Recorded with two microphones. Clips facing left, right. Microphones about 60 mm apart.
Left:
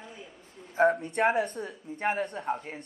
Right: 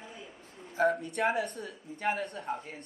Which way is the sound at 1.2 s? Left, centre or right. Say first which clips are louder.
Left 5 dB; left.